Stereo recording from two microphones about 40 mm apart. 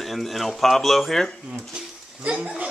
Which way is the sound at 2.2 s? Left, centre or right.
Right.